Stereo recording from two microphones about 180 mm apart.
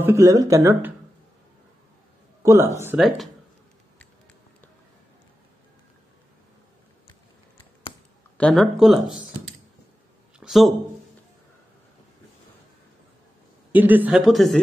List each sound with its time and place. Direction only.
0.0 s speech: 15° right (ahead or behind)
2.4 s speech: 15° right (ahead or behind)
3.0 s speech: centre (ahead or behind)
8.4 s speech: 5° left (ahead or behind)
10.4 s speech: centre (ahead or behind)
13.7 s speech: 10° right (ahead or behind)